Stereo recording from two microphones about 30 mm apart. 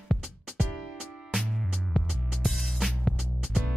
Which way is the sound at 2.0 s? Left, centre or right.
Centre.